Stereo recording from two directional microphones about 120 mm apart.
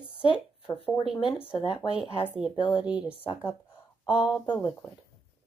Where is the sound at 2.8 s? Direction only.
10° right (ahead or behind).